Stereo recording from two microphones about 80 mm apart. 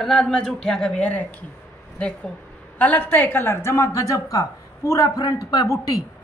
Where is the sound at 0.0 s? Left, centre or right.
Centre.